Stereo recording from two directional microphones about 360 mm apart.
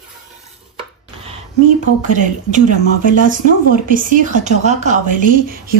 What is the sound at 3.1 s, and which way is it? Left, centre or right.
Speech, right.